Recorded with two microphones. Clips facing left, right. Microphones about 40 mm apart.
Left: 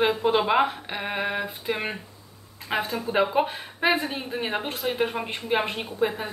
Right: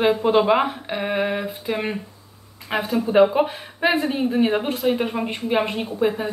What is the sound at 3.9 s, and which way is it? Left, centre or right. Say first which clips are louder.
Speech: right 6 dB; centre.